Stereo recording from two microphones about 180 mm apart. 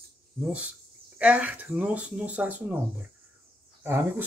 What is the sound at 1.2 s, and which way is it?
Speech, 5° right (ahead or behind).